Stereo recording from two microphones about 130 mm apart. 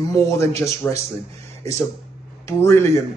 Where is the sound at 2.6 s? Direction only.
20° left (ahead or behind).